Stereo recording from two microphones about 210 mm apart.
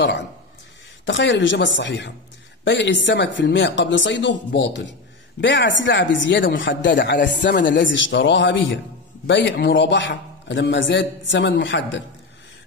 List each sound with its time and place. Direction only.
1.0 s a man's voice: 60° left (ahead or behind)